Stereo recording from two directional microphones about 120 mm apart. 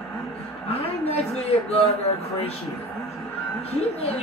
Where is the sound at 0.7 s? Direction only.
60° left (ahead or behind).